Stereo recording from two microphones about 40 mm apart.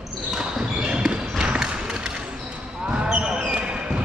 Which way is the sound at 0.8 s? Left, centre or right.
Right.